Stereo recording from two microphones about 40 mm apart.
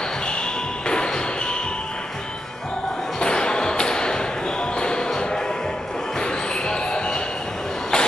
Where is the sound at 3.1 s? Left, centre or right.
Left.